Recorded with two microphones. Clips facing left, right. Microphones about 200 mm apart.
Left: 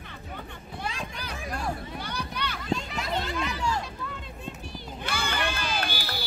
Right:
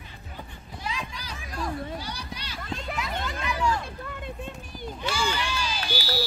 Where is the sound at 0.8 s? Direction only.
55° left (ahead or behind).